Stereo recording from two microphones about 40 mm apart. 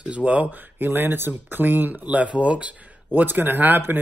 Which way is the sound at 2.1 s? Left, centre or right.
Right.